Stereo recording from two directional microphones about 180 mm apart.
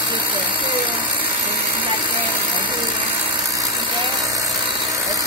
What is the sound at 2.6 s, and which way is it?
Ratchet, 25° right (ahead or behind).